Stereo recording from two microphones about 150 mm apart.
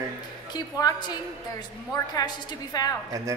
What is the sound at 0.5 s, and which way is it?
A woman's voice, 30° left (ahead or behind).